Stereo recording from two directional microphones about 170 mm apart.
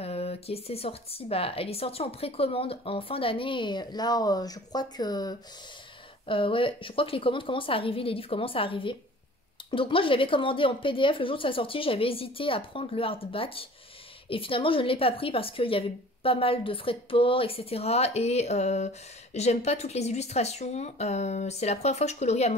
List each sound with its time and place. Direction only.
0.0 s speech: 35° left (ahead or behind)